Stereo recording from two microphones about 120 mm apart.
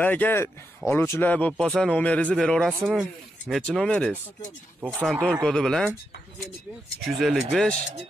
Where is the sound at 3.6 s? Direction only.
10° left (ahead or behind).